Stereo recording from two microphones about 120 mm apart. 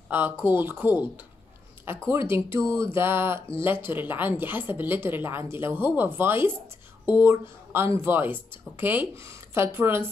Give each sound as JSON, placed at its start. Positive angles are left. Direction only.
{"t": 0.1, "sound": "speech", "side_deg": -15}